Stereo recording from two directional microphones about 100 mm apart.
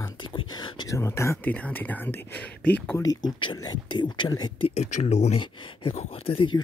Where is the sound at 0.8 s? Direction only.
30° left (ahead or behind).